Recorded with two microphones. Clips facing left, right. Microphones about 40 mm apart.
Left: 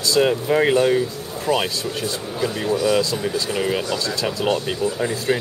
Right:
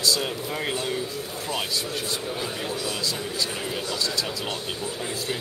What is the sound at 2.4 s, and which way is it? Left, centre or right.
Speech, left.